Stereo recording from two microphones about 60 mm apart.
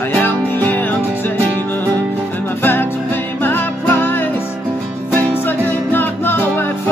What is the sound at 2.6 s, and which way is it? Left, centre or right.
Music, left.